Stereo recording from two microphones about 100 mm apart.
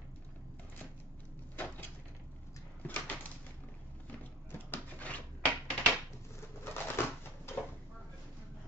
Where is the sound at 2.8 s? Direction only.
15° left (ahead or behind).